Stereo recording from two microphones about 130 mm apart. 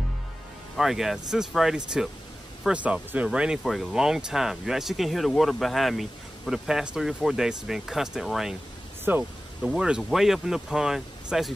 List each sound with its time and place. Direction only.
0.7 s speech: centre (ahead or behind)
9.1 s speech: 15° right (ahead or behind)
9.6 s speech: 5° right (ahead or behind)